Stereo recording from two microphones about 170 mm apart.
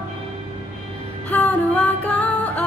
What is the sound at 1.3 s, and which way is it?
Music, 10° left (ahead or behind).